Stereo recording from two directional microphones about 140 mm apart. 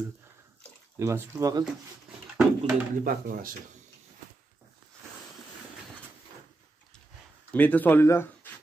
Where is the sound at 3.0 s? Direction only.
90° right.